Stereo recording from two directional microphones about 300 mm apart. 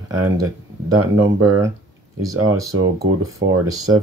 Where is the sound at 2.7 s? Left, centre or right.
Right.